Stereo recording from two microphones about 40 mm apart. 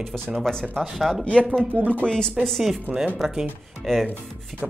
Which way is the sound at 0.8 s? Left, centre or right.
Centre.